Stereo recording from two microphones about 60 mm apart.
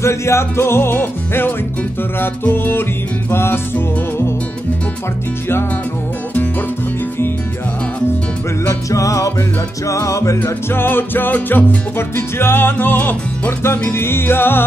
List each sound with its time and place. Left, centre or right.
0.0 s music: left
8.6 s music: left
10.4 s music: left